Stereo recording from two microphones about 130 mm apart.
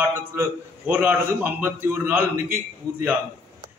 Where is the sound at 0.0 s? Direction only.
15° right (ahead or behind).